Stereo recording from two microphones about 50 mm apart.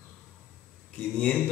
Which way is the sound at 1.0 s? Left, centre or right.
Left.